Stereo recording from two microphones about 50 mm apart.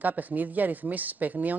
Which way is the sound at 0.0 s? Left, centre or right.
Right.